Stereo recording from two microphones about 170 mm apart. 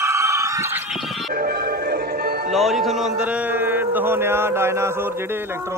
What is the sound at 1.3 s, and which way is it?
Music, 60° right (ahead or behind).